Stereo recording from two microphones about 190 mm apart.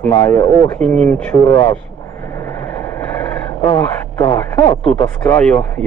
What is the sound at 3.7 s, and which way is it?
Speech, 20° left (ahead or behind).